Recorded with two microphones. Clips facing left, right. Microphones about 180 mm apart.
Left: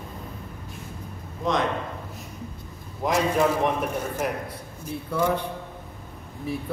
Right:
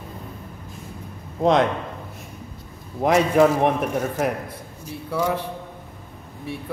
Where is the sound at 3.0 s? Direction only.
60° right (ahead or behind).